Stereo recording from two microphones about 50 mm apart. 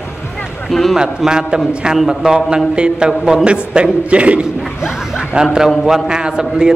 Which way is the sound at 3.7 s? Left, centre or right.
Right.